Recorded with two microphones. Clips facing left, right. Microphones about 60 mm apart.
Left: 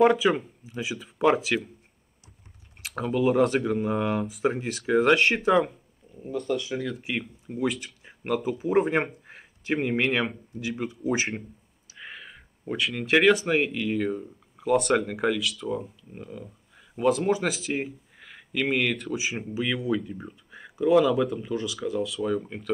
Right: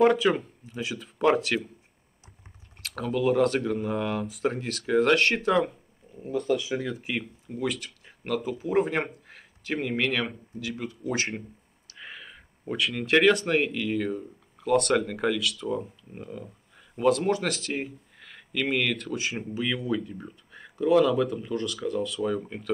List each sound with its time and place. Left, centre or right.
0.0 s speech: centre
3.0 s speech: centre
7.4 s speech: centre
9.3 s a sound: left
9.8 s speech: centre
11.1 s speech: centre